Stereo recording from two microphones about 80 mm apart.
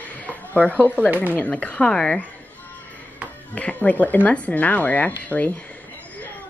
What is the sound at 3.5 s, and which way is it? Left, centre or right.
Speech, centre.